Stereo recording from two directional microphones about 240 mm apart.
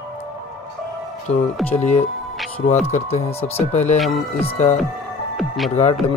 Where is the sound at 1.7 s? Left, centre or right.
Left.